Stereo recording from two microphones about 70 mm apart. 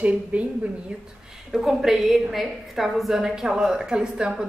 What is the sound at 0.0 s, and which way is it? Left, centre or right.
Speech, right.